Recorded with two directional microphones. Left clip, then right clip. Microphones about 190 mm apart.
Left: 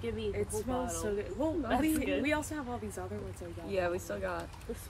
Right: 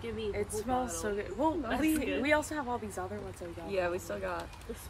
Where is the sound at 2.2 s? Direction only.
20° right (ahead or behind).